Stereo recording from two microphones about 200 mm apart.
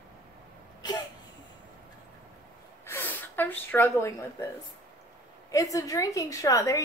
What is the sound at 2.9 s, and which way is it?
Speech, 10° left (ahead or behind).